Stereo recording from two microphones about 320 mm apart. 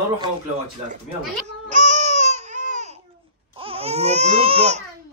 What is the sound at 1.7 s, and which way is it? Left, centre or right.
Baby cry, right.